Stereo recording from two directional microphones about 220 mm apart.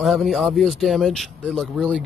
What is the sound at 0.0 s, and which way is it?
Speech, centre (ahead or behind).